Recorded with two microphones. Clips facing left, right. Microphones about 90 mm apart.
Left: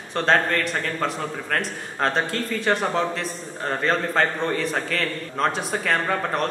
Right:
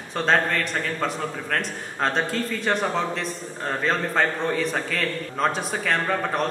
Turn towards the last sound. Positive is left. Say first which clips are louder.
# even
turn(degrees=0)  # may be behind; listen again after turning